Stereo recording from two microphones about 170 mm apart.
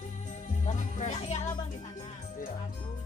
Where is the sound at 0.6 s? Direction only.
45° left (ahead or behind).